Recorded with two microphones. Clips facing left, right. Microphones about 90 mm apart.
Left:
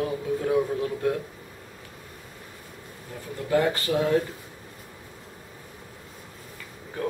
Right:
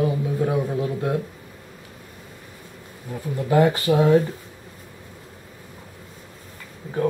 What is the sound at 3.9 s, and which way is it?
Speech, 20° right (ahead or behind).